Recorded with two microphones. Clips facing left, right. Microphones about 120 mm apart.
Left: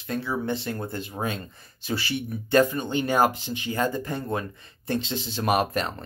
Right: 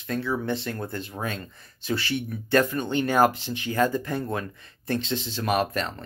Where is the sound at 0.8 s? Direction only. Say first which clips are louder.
Left 1 dB; 15° left (ahead or behind).